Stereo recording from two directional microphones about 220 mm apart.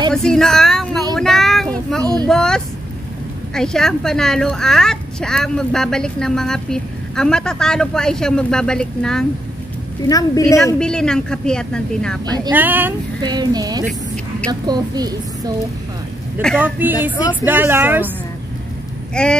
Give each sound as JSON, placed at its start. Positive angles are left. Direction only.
{"t": 0.1, "sound": "speech", "side_deg": 0}
{"t": 1.1, "sound": "a sound", "side_deg": 0}
{"t": 2.2, "sound": "a woman's voice", "side_deg": 5}
{"t": 10.0, "sound": "a woman's voice", "side_deg": 15}
{"t": 10.8, "sound": "a woman's voice", "side_deg": 5}
{"t": 12.5, "sound": "speech", "side_deg": -10}
{"t": 16.5, "sound": "speech", "side_deg": -10}
{"t": 17.2, "sound": "speech", "side_deg": 20}
{"t": 17.5, "sound": "speech", "side_deg": -10}
{"t": 19.2, "sound": "a woman's voice", "side_deg": 5}